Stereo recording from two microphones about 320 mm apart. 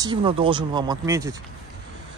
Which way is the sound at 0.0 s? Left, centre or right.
Centre.